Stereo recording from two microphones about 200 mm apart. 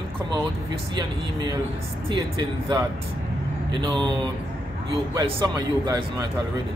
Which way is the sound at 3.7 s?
25° right (ahead or behind).